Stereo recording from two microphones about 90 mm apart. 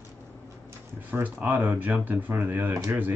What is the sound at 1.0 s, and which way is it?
Speech, 20° right (ahead or behind).